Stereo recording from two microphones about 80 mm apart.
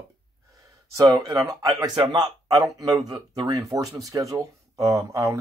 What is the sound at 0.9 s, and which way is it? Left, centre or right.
Speech, right.